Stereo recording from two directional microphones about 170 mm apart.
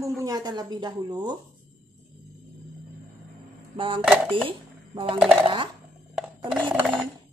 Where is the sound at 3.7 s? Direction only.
30° right (ahead or behind).